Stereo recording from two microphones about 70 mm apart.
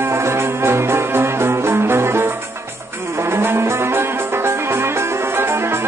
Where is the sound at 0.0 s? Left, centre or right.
Right.